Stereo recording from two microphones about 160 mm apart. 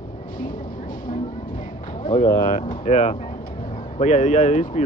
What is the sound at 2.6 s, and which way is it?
Speech, 40° left (ahead or behind).